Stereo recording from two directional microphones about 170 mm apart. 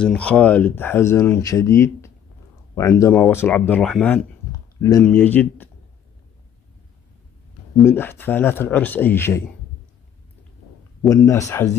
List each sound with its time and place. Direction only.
0.0 s speech: 5° left (ahead or behind)
7.8 s speech: 15° left (ahead or behind)
11.1 s speech: 20° left (ahead or behind)